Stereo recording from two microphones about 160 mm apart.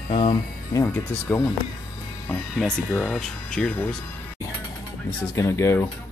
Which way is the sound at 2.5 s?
5° left (ahead or behind).